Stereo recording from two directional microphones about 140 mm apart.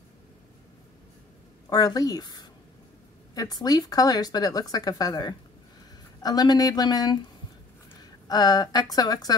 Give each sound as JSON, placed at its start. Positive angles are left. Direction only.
{"t": 1.7, "sound": "a woman's voice", "side_deg": 25}